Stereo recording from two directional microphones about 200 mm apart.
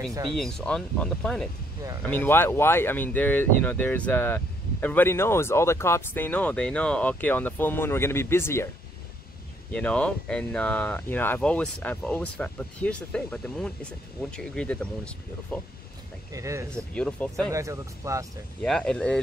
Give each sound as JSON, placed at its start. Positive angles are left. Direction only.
{"t": 0.1, "sound": "speech", "side_deg": -20}
{"t": 0.4, "sound": "speech", "side_deg": 5}
{"t": 9.7, "sound": "speech", "side_deg": 5}
{"t": 16.3, "sound": "speech", "side_deg": -15}
{"t": 16.7, "sound": "speech", "side_deg": 5}
{"t": 17.5, "sound": "speech", "side_deg": -15}
{"t": 18.6, "sound": "speech", "side_deg": 5}